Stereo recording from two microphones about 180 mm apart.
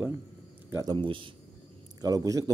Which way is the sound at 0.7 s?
25° right (ahead or behind).